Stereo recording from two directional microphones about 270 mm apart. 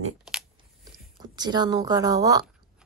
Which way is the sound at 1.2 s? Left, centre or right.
Centre.